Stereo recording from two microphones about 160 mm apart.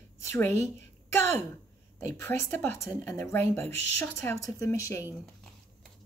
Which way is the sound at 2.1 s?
15° left (ahead or behind).